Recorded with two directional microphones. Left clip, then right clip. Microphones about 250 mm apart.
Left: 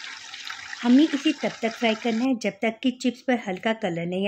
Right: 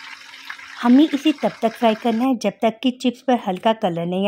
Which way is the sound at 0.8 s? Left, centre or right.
Right.